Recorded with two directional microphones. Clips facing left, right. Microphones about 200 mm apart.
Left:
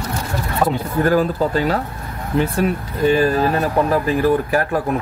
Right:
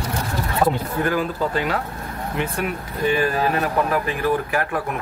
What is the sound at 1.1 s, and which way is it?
Speech, 35° left (ahead or behind).